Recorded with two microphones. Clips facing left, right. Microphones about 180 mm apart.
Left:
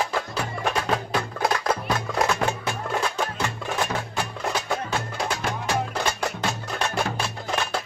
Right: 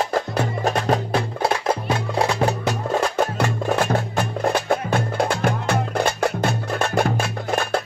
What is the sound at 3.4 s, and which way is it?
Music, 60° right (ahead or behind).